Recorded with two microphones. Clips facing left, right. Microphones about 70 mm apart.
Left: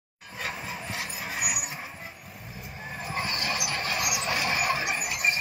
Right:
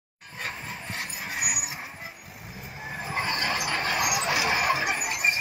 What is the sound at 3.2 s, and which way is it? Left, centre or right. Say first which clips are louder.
Vehicle: right 3 dB; right.